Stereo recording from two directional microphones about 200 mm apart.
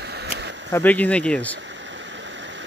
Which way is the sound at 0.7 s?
10° left (ahead or behind).